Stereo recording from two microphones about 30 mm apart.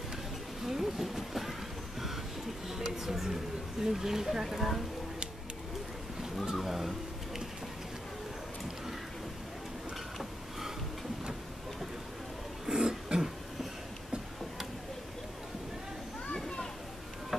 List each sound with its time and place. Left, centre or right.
0.7 s vehicle: centre
3.0 s music: centre
3.8 s speech: centre
6.5 s speech: centre
12.6 s throat clearing: right
16.3 s children playing: left
17.3 s a sound: centre